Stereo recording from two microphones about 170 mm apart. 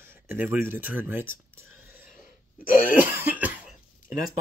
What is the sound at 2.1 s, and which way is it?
Gasp, 50° left (ahead or behind).